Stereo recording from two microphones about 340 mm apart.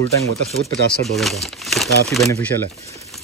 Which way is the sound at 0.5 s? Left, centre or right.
Centre.